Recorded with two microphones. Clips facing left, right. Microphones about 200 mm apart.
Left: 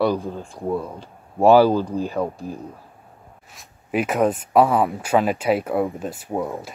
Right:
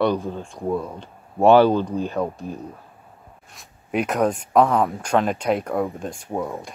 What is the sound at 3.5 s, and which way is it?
Speech, centre (ahead or behind).